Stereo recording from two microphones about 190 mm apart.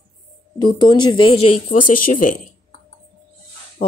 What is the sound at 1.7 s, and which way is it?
Speech, 45° left (ahead or behind).